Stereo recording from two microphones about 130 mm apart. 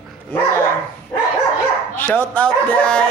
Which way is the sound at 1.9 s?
15° left (ahead or behind).